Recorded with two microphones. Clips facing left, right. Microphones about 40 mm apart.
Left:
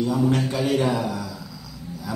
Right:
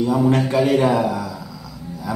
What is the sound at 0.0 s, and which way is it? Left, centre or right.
A man's voice, centre.